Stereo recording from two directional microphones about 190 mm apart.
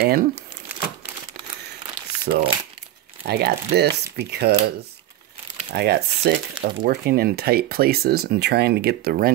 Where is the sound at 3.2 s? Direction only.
55° right (ahead or behind).